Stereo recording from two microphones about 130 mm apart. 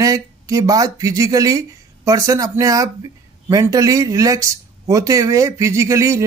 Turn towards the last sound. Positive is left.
turn(degrees=-20)  # may be behind; listen again after turning